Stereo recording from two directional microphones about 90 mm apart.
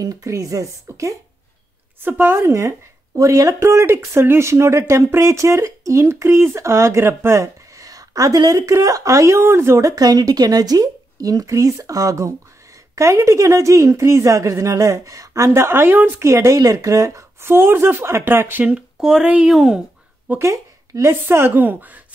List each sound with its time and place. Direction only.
0.0 s speech: 40° right (ahead or behind)
2.0 s a woman's voice: 25° right (ahead or behind); by 19.8 s 5° right (ahead or behind)
20.3 s a woman's voice: 30° right (ahead or behind)